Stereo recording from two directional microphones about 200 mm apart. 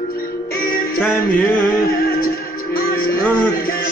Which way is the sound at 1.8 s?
45° left (ahead or behind).